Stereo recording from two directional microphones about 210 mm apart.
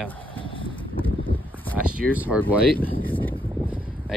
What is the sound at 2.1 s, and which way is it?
Speech, 5° right (ahead or behind).